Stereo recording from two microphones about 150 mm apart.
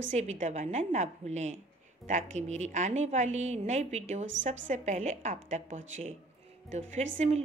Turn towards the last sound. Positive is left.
turn(degrees=-50)  # may be behind; listen again after turning